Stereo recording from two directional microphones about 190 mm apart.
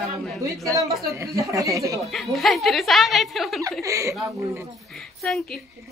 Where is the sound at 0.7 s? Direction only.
15° right (ahead or behind).